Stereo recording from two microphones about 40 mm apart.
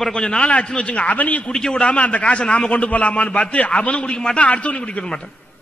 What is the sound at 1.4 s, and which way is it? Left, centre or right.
Speech, centre.